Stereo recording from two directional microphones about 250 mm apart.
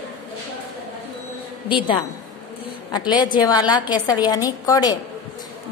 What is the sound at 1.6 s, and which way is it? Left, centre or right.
A woman's voice, centre.